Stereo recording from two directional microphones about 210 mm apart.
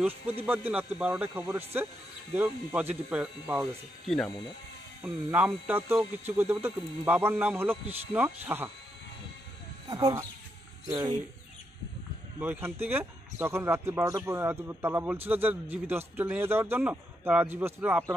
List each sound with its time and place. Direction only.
0.5 s a man's voice: 5° right (ahead or behind)
5.0 s a man's voice: 10° right (ahead or behind)
9.8 s speech: 20° right (ahead or behind)
12.4 s a man's voice: 10° right (ahead or behind)